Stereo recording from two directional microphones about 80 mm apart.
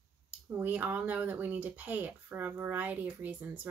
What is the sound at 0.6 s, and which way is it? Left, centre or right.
Speech, right.